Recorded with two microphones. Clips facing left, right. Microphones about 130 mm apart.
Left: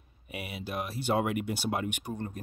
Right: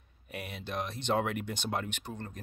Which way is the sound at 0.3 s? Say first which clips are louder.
Left 2 dB; 5° left (ahead or behind).